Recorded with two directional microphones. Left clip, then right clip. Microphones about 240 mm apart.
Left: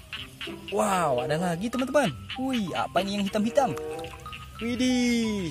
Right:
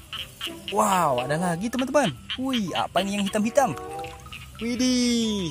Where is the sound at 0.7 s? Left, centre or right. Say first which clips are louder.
Right 3 dB; centre.